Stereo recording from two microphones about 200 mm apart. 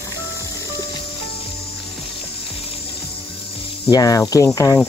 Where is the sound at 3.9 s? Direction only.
15° left (ahead or behind).